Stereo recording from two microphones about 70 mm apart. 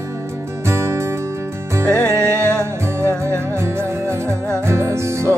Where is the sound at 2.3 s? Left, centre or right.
Right.